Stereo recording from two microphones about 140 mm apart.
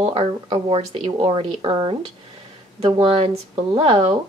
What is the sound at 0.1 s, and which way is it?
Speech, 40° right (ahead or behind).